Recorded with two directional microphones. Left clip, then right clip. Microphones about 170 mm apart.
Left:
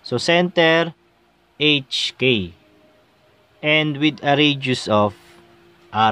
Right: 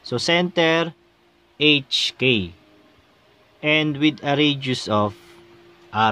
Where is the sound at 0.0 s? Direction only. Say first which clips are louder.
Left 3 dB; 15° left (ahead or behind).